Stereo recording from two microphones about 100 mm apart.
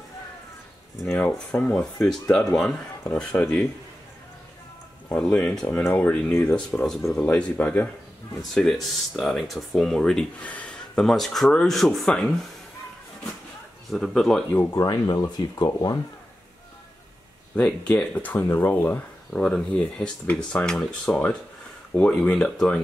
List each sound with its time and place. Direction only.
1.1 s speech: 10° left (ahead or behind)
5.1 s speech: 15° left (ahead or behind)
8.5 s speech: 5° left (ahead or behind)
13.8 s speech: 5° left (ahead or behind)
14.5 s speech: 20° left (ahead or behind)
14.8 s speech: 40° left (ahead or behind)
17.6 s speech: 10° left (ahead or behind)
19.4 s speech: 10° left (ahead or behind)